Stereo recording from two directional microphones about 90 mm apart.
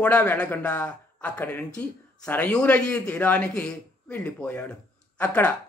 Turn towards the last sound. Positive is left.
turn(degrees=15)  # may be behind; listen again after turning